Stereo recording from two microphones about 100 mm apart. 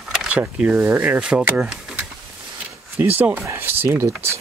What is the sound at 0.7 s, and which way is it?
Speech, 25° right (ahead or behind).